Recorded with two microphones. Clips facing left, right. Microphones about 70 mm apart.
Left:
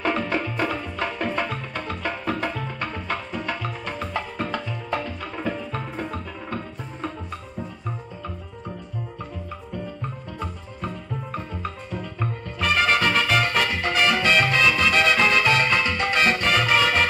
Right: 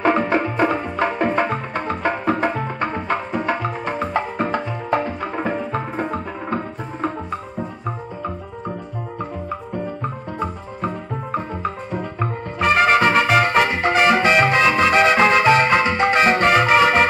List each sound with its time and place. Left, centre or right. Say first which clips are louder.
0.0 s music: right 7 dB; right
9.8 s music: right 5 dB; right